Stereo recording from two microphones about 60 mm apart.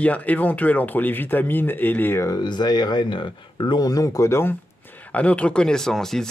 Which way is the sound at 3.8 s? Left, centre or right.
Left.